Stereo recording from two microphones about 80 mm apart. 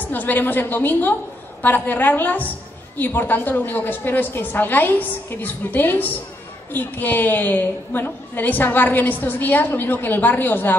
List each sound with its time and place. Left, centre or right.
0.0 s a woman's voice: left